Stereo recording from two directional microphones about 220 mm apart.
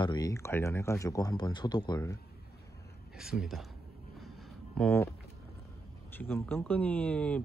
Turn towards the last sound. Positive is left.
turn(degrees=5)  # may be behind; listen again after turning